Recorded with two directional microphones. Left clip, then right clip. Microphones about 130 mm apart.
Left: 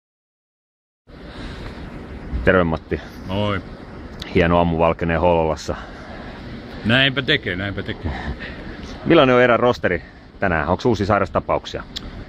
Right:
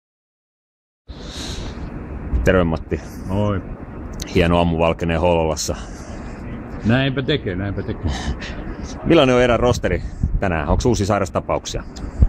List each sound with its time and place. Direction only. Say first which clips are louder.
2.4 s speech: left 1 dB; 20° left (ahead or behind)